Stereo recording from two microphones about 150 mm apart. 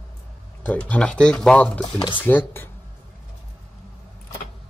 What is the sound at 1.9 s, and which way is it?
Speech, 30° left (ahead or behind).